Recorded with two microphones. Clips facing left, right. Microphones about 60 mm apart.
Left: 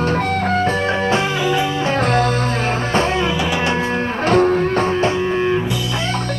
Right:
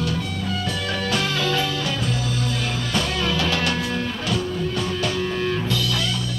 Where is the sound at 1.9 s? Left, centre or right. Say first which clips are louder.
Left 10 dB; left.